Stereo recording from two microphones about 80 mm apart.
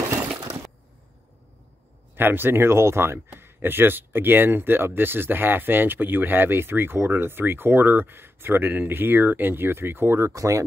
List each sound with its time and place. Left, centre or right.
2.1 s speech: right